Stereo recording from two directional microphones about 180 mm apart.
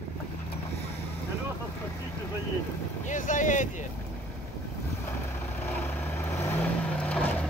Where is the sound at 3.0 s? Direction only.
45° left (ahead or behind).